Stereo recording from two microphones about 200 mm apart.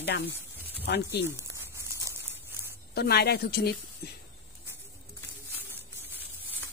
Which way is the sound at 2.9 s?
50° left (ahead or behind).